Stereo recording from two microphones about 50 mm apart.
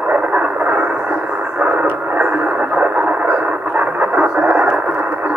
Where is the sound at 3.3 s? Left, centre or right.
Right.